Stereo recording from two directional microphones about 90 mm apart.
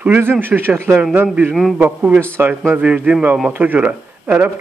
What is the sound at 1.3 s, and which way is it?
A man's voice, 10° right (ahead or behind).